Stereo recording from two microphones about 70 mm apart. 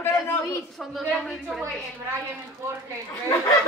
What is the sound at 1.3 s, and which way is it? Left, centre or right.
Speech, centre.